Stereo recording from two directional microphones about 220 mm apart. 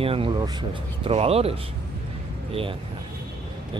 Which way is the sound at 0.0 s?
25° right (ahead or behind).